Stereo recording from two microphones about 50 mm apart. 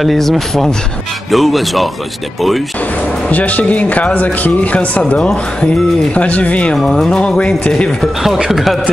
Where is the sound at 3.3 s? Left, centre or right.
Left.